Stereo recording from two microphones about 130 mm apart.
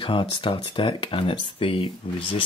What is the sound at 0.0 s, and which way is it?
Speech, 40° left (ahead or behind).